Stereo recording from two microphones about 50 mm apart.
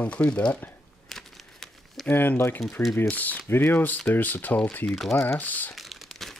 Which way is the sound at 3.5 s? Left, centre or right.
Left.